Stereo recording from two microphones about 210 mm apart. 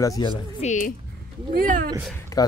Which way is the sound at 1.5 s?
40° right (ahead or behind).